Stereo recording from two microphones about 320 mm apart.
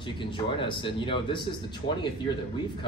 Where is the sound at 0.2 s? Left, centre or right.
Centre.